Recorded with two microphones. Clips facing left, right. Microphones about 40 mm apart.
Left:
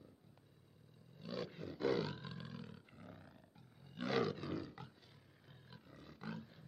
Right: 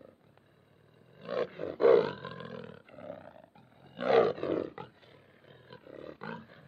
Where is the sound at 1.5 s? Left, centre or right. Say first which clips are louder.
Right 15 dB; right.